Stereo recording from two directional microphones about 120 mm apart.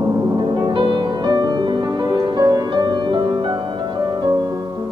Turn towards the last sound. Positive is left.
turn(degrees=-35)  # may be behind; listen again after turning